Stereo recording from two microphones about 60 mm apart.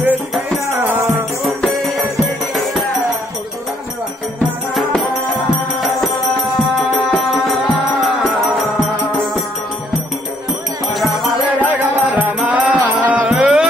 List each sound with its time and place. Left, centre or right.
1.4 s music: centre
5.8 s music: centre
10.9 s music: centre
11.6 s music: right
13.3 s music: centre